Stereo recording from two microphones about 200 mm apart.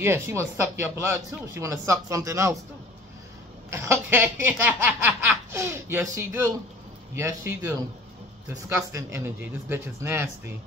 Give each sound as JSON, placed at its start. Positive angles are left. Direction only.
{"t": 0.0, "sound": "speech", "side_deg": -10}
{"t": 3.7, "sound": "speech", "side_deg": -10}